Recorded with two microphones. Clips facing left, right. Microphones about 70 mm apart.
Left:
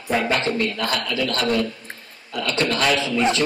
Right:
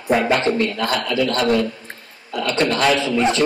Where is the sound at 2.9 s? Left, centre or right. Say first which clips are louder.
Right 3 dB; centre.